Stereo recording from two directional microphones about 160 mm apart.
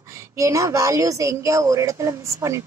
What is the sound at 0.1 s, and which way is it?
Speech, 20° right (ahead or behind).